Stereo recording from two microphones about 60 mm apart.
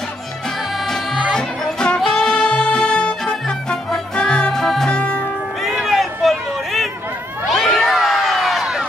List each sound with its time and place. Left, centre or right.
1.3 s music: centre
4.9 s music: left
5.6 s a sound: centre
7.4 s cat: centre